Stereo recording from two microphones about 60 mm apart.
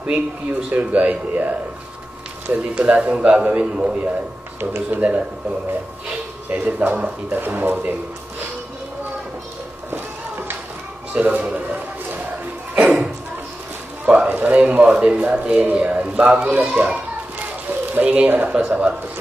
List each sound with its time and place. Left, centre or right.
0.0 s a man's voice: right
4.6 s speech: right
6.6 s speech: right
11.1 s a sound: right
14.0 s a man's voice: right